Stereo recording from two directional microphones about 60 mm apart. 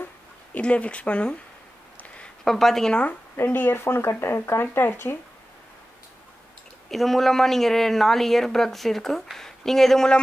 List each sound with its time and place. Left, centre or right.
0.6 s speech: left
2.0 s a sound: left
2.4 s speech: centre
3.3 s speech: left
6.9 s a woman's voice: centre